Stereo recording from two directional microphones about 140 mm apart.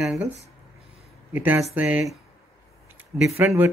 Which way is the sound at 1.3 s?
10° right (ahead or behind).